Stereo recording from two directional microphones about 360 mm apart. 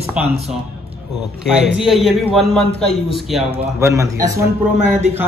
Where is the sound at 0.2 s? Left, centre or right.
Centre.